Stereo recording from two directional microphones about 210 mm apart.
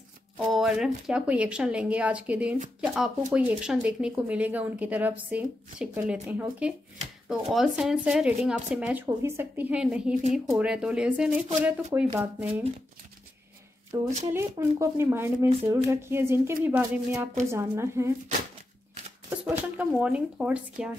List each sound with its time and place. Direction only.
0.5 s speech: centre (ahead or behind)
13.9 s speech: 15° right (ahead or behind)
19.4 s speech: 5° right (ahead or behind)